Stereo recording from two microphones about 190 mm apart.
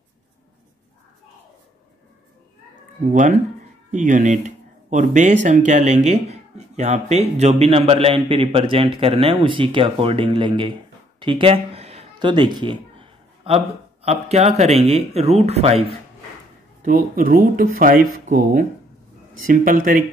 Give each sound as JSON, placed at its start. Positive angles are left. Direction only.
{"t": 3.1, "sound": "a man's voice", "side_deg": -40}
{"t": 16.8, "sound": "speech", "side_deg": -50}